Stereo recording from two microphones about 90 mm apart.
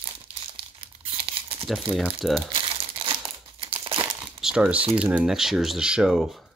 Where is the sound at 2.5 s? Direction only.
85° right.